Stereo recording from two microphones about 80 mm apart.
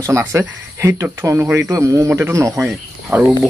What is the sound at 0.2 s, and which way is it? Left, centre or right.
Speech, right.